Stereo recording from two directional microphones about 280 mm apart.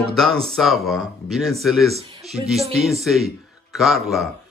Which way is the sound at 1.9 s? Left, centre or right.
Centre.